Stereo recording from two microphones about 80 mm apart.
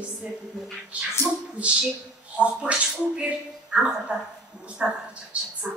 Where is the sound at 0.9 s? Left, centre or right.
Centre.